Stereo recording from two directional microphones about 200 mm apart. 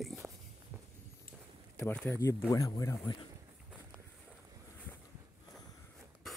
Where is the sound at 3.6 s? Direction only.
5° right (ahead or behind).